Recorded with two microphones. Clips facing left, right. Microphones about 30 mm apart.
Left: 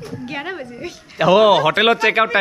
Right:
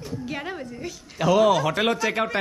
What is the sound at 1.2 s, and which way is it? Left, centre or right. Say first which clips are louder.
Speech: left 7 dB; left.